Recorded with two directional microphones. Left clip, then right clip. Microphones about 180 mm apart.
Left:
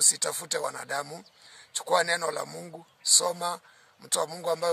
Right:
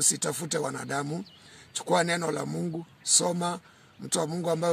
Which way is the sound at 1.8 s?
10° left (ahead or behind).